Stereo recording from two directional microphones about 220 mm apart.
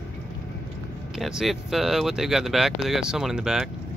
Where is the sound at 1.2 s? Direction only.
Centre (ahead or behind).